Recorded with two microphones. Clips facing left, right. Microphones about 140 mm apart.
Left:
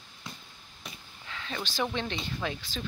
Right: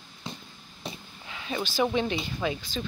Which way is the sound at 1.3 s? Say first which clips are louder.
Right 5 dB; 10° right (ahead or behind).